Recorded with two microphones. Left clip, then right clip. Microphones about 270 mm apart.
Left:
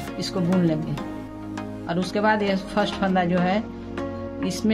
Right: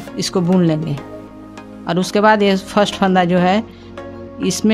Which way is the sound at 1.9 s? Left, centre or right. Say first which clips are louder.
Right 9 dB; right.